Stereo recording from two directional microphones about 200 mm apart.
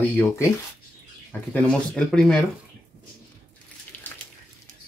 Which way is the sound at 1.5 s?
5° left (ahead or behind).